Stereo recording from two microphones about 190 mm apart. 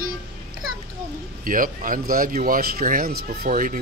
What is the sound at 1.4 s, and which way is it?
Speech, 45° right (ahead or behind).